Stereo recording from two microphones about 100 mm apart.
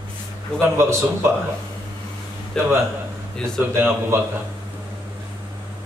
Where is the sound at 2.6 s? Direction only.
5° left (ahead or behind).